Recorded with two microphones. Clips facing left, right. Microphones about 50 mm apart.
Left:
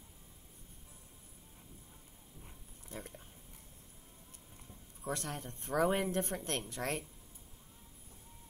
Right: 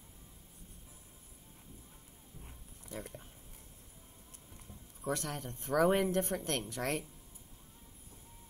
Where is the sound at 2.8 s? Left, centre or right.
Left.